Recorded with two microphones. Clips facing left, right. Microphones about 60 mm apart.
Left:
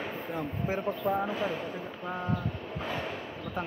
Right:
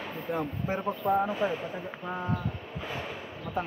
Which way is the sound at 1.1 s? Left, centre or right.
Centre.